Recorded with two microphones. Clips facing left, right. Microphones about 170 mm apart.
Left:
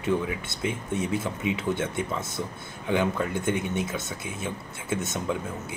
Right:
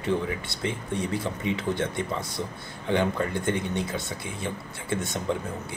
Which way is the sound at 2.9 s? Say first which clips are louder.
Even; 5° left (ahead or behind).